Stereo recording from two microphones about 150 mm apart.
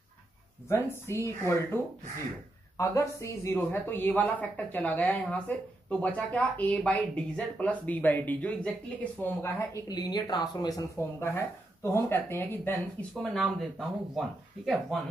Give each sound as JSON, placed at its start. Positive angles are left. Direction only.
{"t": 0.7, "sound": "speech", "side_deg": 20}
{"t": 2.8, "sound": "speech", "side_deg": 20}
{"t": 11.0, "sound": "speech", "side_deg": 15}
{"t": 13.1, "sound": "speech", "side_deg": 0}